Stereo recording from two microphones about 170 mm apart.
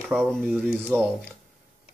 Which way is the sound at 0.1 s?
Centre (ahead or behind).